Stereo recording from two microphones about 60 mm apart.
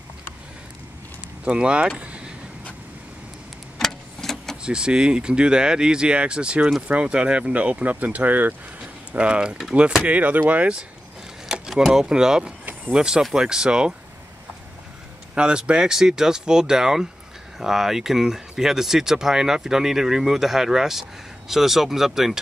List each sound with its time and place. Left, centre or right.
1.4 s speech: centre
2.0 s vehicle: centre
3.7 s vehicle: centre
4.6 s speech: centre; by 8.5 s right
8.8 s a sound: centre
10.0 s speech: right
11.4 s speech: centre
15.3 s speech: centre